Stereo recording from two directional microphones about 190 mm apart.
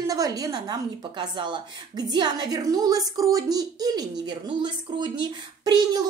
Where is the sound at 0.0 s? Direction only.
20° right (ahead or behind).